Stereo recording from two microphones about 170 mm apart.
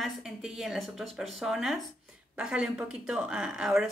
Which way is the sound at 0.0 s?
Centre (ahead or behind).